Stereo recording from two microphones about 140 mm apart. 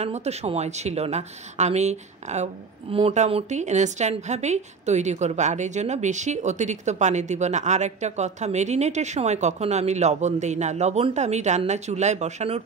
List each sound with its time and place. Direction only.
0.0 s a woman's voice: 50° right (ahead or behind)